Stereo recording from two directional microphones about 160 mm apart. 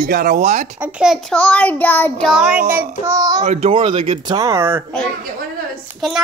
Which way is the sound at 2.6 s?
15° right (ahead or behind).